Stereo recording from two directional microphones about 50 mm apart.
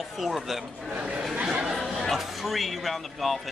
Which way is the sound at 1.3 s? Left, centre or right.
Right.